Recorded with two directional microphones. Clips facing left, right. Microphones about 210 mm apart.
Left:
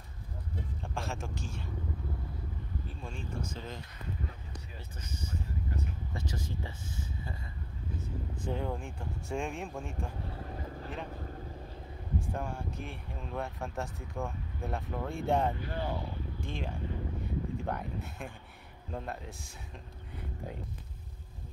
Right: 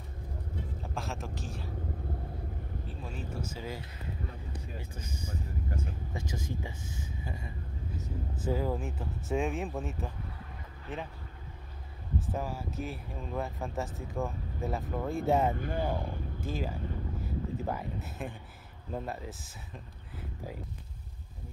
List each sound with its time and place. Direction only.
0.9 s speech: centre (ahead or behind)
2.9 s speech: 5° right (ahead or behind)
8.5 s speech: 5° right (ahead or behind)
10.4 s boat: 40° left (ahead or behind)
12.2 s speech: 5° right (ahead or behind)
15.8 s speech: 50° right (ahead or behind)
16.4 s speech: 5° right (ahead or behind)
17.2 s a sound: 5° right (ahead or behind)
18.9 s speech: 5° right (ahead or behind)